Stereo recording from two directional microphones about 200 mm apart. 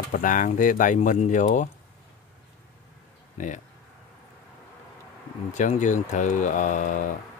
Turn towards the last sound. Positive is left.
turn(degrees=40)  # may be behind; listen again after turning